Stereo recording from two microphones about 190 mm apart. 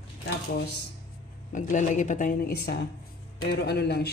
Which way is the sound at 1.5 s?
40° left (ahead or behind).